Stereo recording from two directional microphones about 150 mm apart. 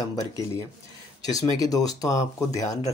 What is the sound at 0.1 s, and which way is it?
Speech, 25° left (ahead or behind).